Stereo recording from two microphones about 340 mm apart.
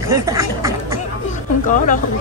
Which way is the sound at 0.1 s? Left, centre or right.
Centre.